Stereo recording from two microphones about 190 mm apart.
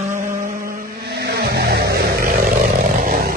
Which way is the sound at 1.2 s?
60° right (ahead or behind).